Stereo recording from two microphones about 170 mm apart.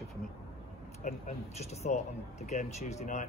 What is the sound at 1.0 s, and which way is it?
Speech, 45° left (ahead or behind).